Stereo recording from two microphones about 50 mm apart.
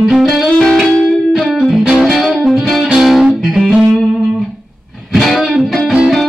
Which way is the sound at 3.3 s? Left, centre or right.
Centre.